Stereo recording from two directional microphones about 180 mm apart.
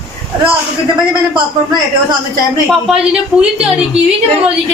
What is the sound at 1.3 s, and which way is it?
Speech, 20° right (ahead or behind).